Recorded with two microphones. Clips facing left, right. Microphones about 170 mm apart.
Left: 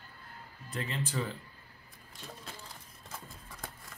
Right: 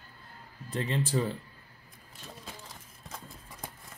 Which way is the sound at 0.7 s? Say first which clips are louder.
Right 6 dB; 30° right (ahead or behind).